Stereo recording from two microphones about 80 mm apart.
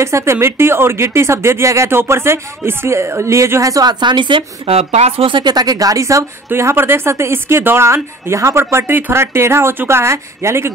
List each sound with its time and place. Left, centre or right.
0.0 s speech: right
4.0 s a woman's voice: right
5.5 s speech: right